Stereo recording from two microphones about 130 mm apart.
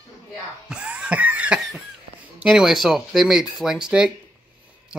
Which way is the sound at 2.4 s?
5° right (ahead or behind).